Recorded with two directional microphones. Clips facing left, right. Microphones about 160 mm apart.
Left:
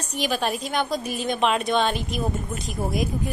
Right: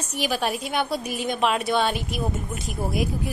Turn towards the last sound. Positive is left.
turn(degrees=0)  # may be behind; listen again after turning